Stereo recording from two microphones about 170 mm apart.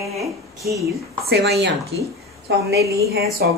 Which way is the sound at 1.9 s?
90° right.